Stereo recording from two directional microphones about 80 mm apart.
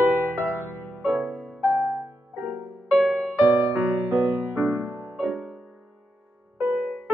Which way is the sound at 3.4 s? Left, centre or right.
Centre.